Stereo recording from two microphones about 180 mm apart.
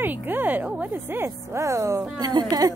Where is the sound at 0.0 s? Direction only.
10° right (ahead or behind).